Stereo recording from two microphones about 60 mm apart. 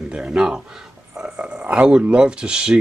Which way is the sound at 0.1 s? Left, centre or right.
Centre.